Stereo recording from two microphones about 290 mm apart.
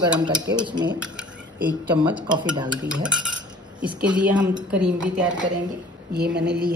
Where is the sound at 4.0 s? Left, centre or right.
Centre.